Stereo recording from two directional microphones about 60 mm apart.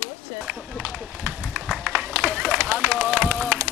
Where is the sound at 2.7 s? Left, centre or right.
Right.